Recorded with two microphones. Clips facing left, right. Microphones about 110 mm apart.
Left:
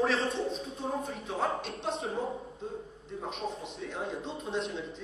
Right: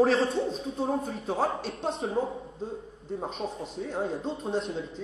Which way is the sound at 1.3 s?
35° right (ahead or behind).